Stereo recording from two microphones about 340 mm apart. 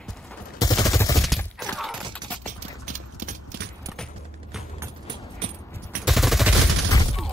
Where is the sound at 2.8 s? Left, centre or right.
Right.